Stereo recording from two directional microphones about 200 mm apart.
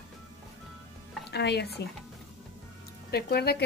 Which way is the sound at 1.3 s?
55° left (ahead or behind).